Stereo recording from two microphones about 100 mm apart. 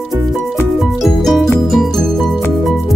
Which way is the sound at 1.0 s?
Centre (ahead or behind).